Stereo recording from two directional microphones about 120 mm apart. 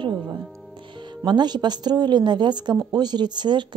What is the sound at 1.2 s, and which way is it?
Speech, 35° right (ahead or behind).